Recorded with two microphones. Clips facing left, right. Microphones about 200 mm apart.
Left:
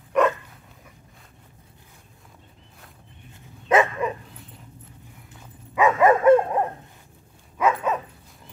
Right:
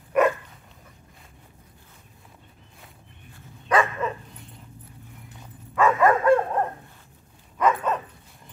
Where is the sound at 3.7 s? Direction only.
15° left (ahead or behind).